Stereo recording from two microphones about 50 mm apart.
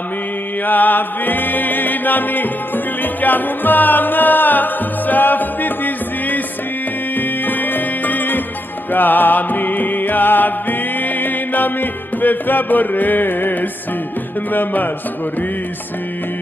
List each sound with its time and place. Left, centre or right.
0.7 s music: left
14.5 s a man's voice: left